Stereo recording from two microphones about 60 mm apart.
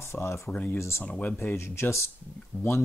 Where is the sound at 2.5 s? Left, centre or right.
Left.